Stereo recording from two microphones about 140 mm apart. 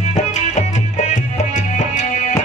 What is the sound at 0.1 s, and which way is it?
Music, 55° left (ahead or behind).